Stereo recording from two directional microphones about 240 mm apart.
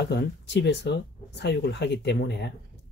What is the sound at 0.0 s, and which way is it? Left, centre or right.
Speech, left.